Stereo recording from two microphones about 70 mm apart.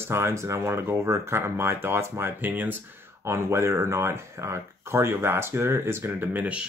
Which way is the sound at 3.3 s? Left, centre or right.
Right.